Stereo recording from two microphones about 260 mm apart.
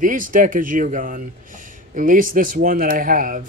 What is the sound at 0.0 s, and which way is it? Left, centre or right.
Speech, right.